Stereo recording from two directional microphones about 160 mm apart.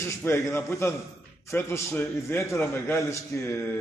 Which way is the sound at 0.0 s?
15° left (ahead or behind).